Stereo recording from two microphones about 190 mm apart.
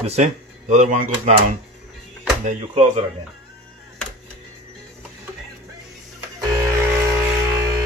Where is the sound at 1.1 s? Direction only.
30° right (ahead or behind).